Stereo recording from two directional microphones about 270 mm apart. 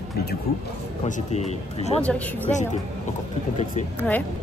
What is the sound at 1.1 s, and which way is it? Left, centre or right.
Speech, left.